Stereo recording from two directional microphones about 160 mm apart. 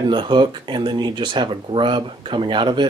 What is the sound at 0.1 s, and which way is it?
Speech, 30° right (ahead or behind).